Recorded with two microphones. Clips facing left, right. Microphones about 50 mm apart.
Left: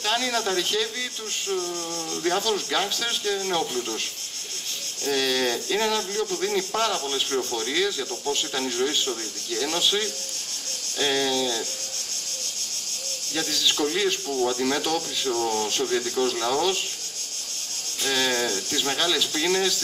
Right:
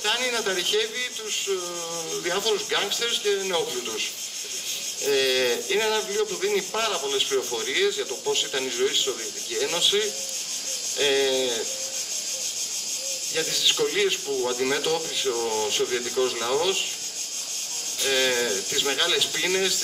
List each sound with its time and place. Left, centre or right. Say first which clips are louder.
0.0 s speech: left 1 dB; centre
2.2 s speech: left 1 dB; centre
5.0 s speech: right 2 dB; centre
13.3 s speech: even; centre
18.0 s speech: right 1 dB; centre